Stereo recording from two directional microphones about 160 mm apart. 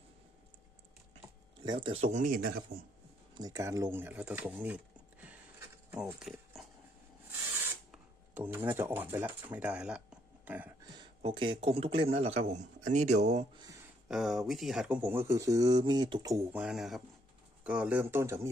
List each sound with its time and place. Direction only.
1.6 s speech: 30° right (ahead or behind); by 2.8 s 60° right (ahead or behind)
3.3 s speech: 20° right (ahead or behind); by 6.6 s centre (ahead or behind)
7.9 s speech: 10° right (ahead or behind)
11.0 s speech: 30° right (ahead or behind)
14.0 s speech: centre (ahead or behind); by 16.4 s 25° right (ahead or behind)
16.5 s speech: 5° right (ahead or behind)